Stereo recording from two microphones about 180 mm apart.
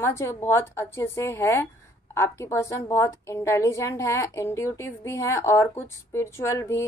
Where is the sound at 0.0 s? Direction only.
15° left (ahead or behind).